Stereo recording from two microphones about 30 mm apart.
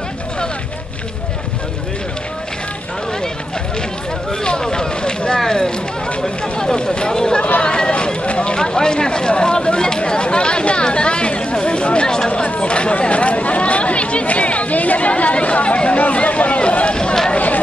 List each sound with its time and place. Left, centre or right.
4.3 s a sound: left
5.5 s speech: left
7.6 s a sound: left
8.3 s vehicle: left
8.5 s chatter: left
12.4 s speech: left